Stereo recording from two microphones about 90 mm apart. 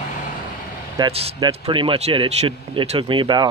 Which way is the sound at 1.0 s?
40° right (ahead or behind).